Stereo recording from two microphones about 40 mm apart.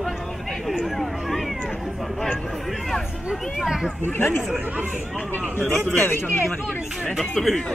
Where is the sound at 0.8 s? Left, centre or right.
Centre.